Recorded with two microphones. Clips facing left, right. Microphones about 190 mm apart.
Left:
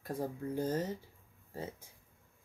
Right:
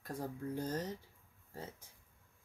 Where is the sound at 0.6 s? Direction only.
5° left (ahead or behind).